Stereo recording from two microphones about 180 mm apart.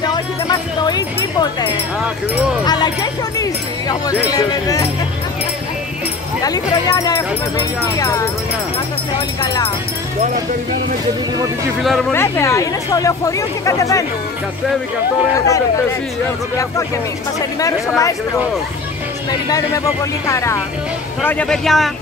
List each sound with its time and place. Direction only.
0.0 s a sound: 25° left (ahead or behind)
2.6 s speech: 25° left (ahead or behind)
6.4 s speech: 20° left (ahead or behind)
11.3 s speech: 20° right (ahead or behind)
12.1 s speech: 15° left (ahead or behind)
15.3 s speech: 15° left (ahead or behind)
17.6 s speech: 20° left (ahead or behind)
19.5 s a man's voice: 20° left (ahead or behind); by 21.9 s centre (ahead or behind)